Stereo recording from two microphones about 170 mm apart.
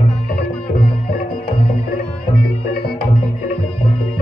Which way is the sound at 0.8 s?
60° left (ahead or behind).